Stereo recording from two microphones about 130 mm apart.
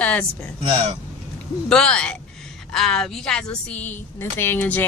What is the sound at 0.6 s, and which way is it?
Speech, 50° right (ahead or behind).